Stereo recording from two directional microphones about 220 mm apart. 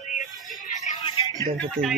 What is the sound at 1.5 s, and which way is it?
Speech, 5° left (ahead or behind).